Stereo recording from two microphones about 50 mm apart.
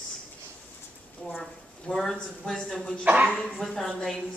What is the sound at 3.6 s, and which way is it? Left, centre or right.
Speech, centre.